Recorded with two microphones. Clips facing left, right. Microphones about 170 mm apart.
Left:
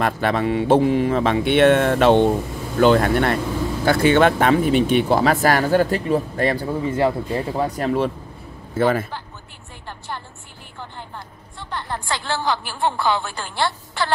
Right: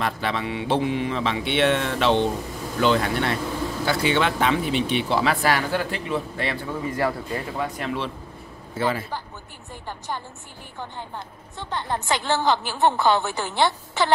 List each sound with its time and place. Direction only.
0.0 s speech: 50° left (ahead or behind); by 7.4 s 25° left (ahead or behind)
7.5 s a man's voice: 35° left (ahead or behind)
9.8 s a woman's voice: 15° right (ahead or behind)
11.7 s a woman's voice: 20° right (ahead or behind)